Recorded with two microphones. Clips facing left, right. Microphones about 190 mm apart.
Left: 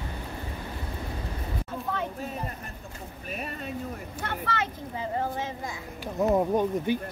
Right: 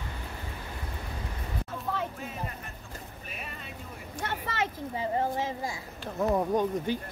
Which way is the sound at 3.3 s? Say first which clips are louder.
Left 10 dB; 40° left (ahead or behind).